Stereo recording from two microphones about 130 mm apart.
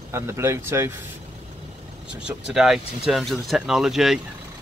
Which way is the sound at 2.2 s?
5° right (ahead or behind).